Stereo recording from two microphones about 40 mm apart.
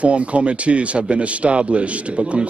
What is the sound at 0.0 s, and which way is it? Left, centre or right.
A man's voice, right.